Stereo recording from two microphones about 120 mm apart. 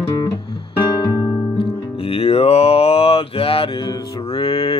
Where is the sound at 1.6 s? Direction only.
50° left (ahead or behind).